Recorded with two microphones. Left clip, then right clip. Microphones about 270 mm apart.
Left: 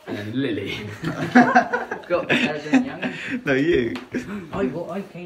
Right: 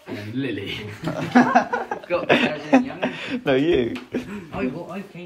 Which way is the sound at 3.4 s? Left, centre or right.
Centre.